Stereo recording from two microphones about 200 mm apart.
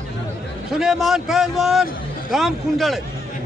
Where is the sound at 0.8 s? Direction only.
Centre (ahead or behind).